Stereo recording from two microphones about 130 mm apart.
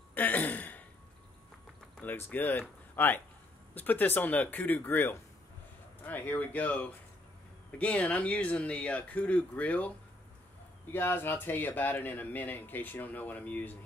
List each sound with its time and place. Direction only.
0.1 s throat clearing: 15° left (ahead or behind)
2.0 s speech: 15° left (ahead or behind)